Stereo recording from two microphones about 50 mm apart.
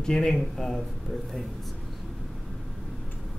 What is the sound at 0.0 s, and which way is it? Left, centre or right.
Speech, centre.